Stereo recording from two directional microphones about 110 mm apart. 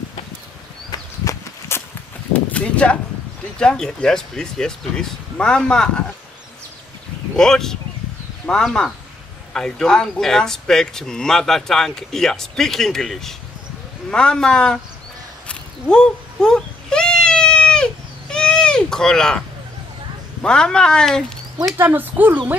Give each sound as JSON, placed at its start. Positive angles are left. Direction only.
{"t": 1.2, "sound": "walk", "side_deg": 30}
{"t": 2.3, "sound": "a sound", "side_deg": 10}
{"t": 3.5, "sound": "speech", "side_deg": 5}
{"t": 7.3, "sound": "speech", "side_deg": 5}
{"t": 15.4, "sound": "a sound", "side_deg": 10}
{"t": 20.4, "sound": "speech", "side_deg": 10}
{"t": 21.7, "sound": "speech", "side_deg": -15}